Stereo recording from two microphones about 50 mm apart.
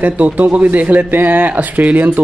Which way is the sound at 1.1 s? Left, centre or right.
Right.